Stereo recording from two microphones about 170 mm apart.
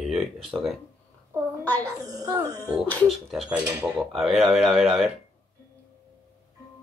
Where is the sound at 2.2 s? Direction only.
20° right (ahead or behind).